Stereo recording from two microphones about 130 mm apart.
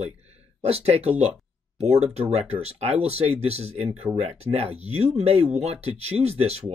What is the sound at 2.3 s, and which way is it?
Speech, 55° right (ahead or behind).